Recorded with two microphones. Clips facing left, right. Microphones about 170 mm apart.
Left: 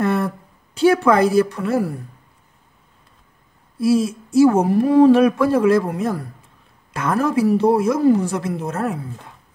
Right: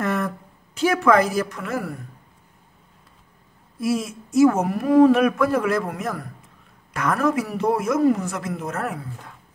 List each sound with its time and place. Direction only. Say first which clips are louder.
0.0 s a sound: left 4 dB; 30° left (ahead or behind)
0.7 s a woman's voice: left 3 dB; 30° left (ahead or behind)
3.8 s a woman's voice: left 7 dB; 30° left (ahead or behind)